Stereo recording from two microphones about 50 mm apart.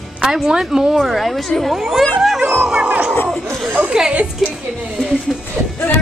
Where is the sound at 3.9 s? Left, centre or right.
Centre.